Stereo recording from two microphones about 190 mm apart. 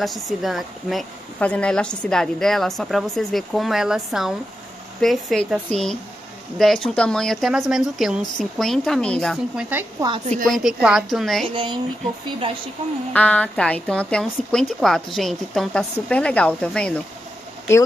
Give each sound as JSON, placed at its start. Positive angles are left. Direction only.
{"t": 0.0, "sound": "speech", "side_deg": 0}
{"t": 9.7, "sound": "speech", "side_deg": -10}
{"t": 10.3, "sound": "speech", "side_deg": 0}
{"t": 11.4, "sound": "speech", "side_deg": -25}
{"t": 13.1, "sound": "speech", "side_deg": 5}